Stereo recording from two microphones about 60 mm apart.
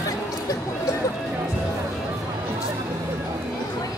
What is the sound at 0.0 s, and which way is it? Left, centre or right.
Chatter, left.